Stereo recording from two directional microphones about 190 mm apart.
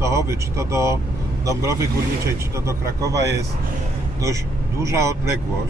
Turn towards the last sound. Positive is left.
turn(degrees=-15)  # may be behind; listen again after turning